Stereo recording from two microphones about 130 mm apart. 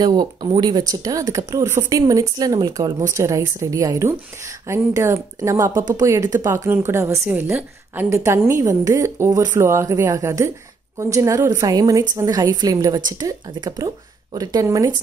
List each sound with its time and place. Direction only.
0.0 s speech: 30° right (ahead or behind)